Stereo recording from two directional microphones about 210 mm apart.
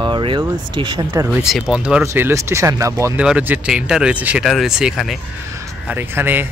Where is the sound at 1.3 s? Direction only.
5° right (ahead or behind).